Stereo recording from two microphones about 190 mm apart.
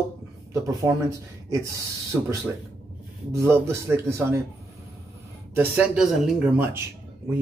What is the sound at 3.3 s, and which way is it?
Speech, 15° right (ahead or behind).